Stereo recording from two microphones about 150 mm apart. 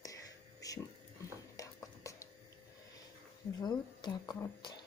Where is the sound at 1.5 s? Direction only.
20° left (ahead or behind).